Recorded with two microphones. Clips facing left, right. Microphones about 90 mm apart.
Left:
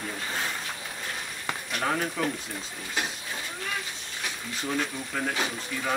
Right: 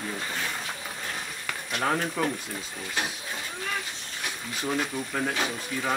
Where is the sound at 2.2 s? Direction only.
5° right (ahead or behind).